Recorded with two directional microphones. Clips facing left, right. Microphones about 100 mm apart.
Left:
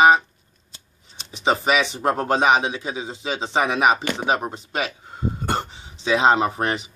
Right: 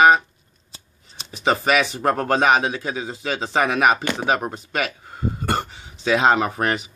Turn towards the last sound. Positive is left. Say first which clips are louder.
# even
turn(degrees=25)  # may be behind; listen again after turning